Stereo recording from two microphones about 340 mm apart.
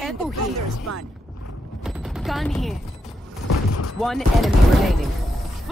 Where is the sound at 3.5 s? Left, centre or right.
Left.